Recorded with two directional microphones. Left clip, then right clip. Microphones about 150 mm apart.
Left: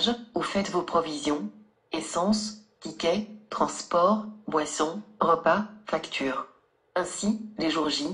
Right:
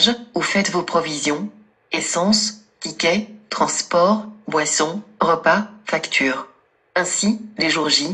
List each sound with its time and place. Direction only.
0.0 s speech: 20° right (ahead or behind)